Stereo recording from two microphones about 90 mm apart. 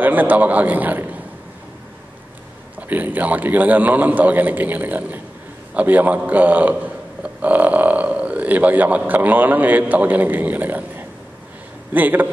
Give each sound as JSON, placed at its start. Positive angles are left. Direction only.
{"t": 0.0, "sound": "a man's voice", "side_deg": -20}
{"t": 2.9, "sound": "a man's voice", "side_deg": -20}